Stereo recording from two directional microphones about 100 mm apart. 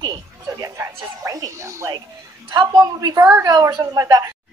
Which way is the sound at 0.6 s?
35° right (ahead or behind).